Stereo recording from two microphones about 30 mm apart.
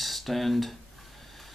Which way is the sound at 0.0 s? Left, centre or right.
Centre.